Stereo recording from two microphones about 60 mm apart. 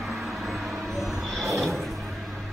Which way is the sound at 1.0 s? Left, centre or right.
Centre.